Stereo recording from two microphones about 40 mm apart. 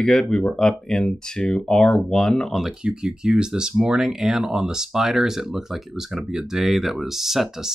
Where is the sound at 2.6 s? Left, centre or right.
Centre.